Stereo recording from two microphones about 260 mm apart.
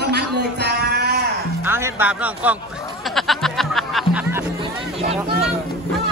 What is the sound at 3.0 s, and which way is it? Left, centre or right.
Music, centre.